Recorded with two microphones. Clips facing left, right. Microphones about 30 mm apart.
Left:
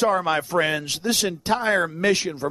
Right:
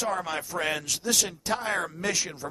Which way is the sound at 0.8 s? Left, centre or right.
Left.